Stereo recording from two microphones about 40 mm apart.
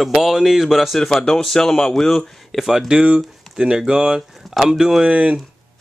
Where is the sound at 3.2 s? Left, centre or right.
Centre.